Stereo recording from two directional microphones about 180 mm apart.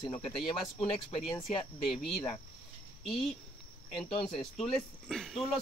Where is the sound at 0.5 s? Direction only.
30° left (ahead or behind).